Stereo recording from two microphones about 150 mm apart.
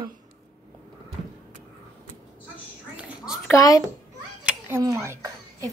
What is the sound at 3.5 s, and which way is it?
Speech, 20° left (ahead or behind).